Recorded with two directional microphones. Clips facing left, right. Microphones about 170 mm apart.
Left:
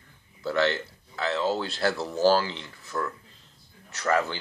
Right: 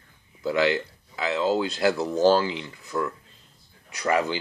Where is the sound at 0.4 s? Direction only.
15° right (ahead or behind).